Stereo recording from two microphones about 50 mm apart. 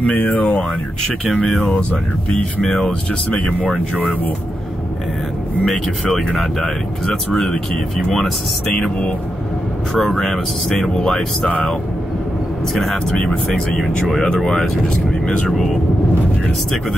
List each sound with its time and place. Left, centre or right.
0.0 s speech: left
2.6 s speech: centre
5.7 s speech: centre
9.9 s speech: centre
12.7 s speech: centre
15.2 s speech: left